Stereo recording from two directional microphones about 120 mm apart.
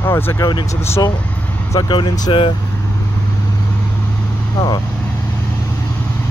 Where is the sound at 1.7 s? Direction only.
35° left (ahead or behind).